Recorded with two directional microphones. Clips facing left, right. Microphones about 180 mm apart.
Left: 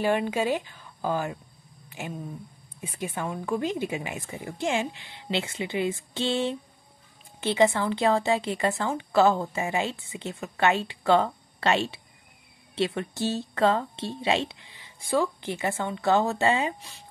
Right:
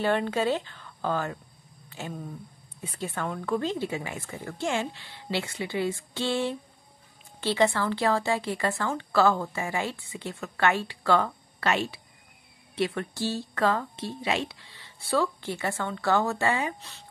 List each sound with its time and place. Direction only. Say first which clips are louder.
0.0 s speech: left 1 dB; 10° left (ahead or behind)
1.9 s a sound: left 1 dB; 15° left (ahead or behind)
2.8 s a woman's voice: left 1 dB; 15° left (ahead or behind)